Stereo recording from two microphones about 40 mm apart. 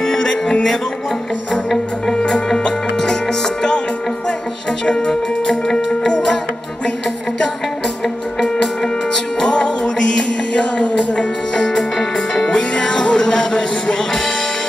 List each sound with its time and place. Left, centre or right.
0.0 s music: centre
1.7 s music: centre
4.8 s music: left
5.1 s music: centre
8.4 s music: centre
10.5 s music: left; by 14.2 s centre